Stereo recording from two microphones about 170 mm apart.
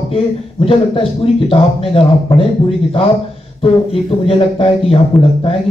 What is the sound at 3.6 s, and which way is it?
Speech, 35° left (ahead or behind).